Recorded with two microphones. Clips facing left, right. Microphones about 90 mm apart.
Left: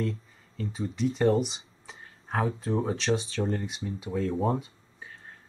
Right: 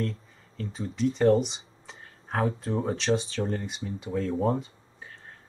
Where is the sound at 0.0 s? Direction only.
Centre (ahead or behind).